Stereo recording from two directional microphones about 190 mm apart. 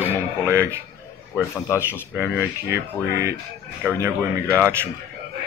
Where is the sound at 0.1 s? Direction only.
15° right (ahead or behind).